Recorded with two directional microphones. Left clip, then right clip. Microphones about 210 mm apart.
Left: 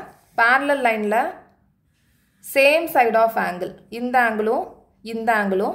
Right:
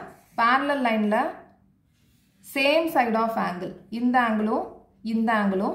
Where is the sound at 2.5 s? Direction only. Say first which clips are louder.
Left 6 dB; 50° left (ahead or behind).